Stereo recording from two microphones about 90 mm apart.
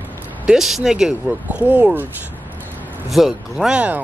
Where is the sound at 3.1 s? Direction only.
Centre (ahead or behind).